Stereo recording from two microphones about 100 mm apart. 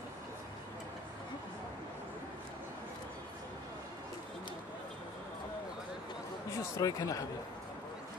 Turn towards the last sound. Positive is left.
turn(degrees=35)  # may be behind; listen again after turning